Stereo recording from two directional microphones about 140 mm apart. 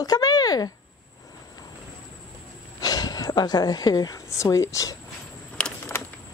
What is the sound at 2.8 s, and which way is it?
A woman's voice, 30° left (ahead or behind).